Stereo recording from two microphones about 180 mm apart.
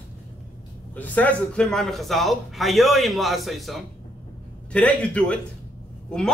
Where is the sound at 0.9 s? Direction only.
10° left (ahead or behind).